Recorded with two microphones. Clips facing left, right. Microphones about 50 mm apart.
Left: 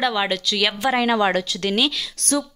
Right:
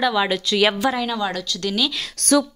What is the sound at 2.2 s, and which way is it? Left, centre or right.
Speech, right.